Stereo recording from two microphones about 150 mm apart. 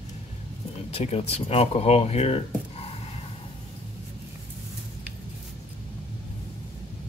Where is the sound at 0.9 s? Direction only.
45° left (ahead or behind).